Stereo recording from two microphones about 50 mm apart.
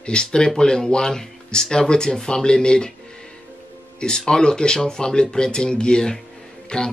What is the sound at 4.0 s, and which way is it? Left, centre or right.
Speech, centre.